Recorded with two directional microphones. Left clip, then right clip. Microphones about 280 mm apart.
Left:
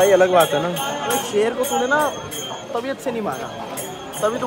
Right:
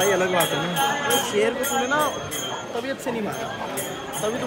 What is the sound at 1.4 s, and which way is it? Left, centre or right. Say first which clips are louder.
Speech: left 4 dB; left.